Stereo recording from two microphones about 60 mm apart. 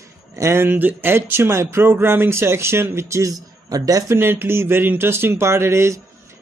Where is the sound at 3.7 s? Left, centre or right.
Right.